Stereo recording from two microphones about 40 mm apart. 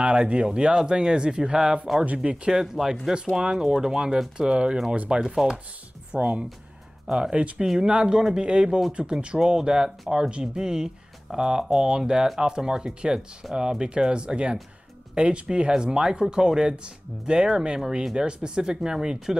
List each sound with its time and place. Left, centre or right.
0.0 s speech: right; by 5.6 s centre
6.1 s speech: right
7.1 s speech: centre